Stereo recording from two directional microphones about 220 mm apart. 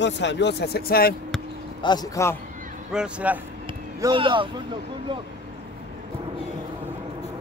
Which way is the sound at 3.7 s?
20° right (ahead or behind).